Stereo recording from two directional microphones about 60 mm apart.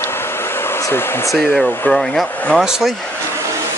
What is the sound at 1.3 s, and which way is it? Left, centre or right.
Speech, centre.